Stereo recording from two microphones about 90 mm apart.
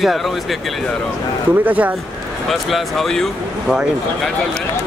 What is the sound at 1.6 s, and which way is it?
Speech, 15° right (ahead or behind).